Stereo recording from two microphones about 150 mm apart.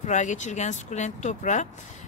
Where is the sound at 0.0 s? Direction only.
55° left (ahead or behind).